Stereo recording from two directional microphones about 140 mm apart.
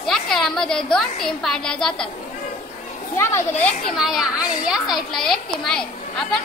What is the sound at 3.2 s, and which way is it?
Speech, 20° left (ahead or behind).